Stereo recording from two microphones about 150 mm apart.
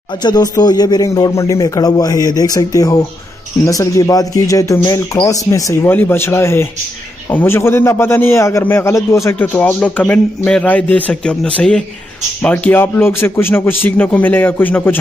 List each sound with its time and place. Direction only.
0.1 s a man's voice: 30° left (ahead or behind); by 15.0 s 10° left (ahead or behind)